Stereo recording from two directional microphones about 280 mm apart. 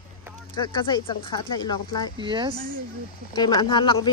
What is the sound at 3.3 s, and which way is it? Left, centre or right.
Speech, centre.